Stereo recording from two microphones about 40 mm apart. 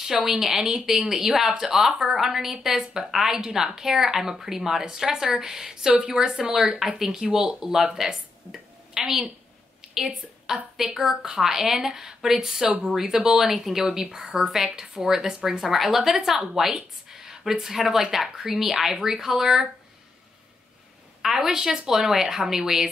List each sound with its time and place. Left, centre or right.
0.0 s a woman's voice: centre
10.4 s a woman's voice: centre
21.2 s a woman's voice: centre